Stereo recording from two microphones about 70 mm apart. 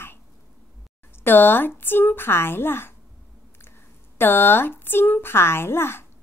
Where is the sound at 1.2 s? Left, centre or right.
Left.